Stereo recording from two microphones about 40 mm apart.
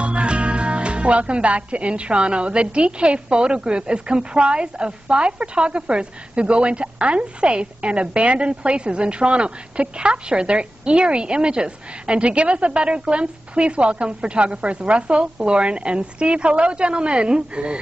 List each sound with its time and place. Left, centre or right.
0.0 s speech: right